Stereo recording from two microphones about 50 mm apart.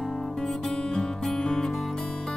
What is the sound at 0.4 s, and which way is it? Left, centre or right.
Music, centre.